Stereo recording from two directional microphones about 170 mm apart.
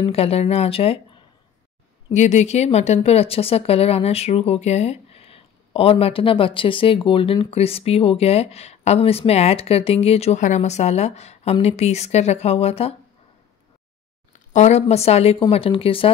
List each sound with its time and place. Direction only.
0.0 s a woman's voice: 35° left (ahead or behind)
2.0 s a woman's voice: 40° left (ahead or behind)
14.5 s a woman's voice: 40° left (ahead or behind)